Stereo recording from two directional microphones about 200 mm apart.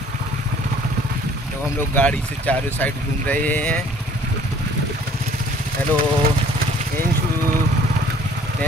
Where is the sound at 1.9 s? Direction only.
10° left (ahead or behind).